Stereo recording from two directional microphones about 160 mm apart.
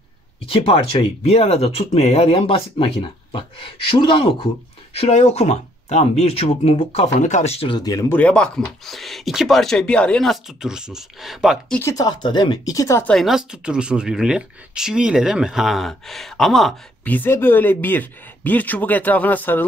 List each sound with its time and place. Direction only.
0.5 s speech: 35° left (ahead or behind)
8.2 s speech: 5° left (ahead or behind)
11.8 s speech: 20° left (ahead or behind)
13.1 s speech: centre (ahead or behind)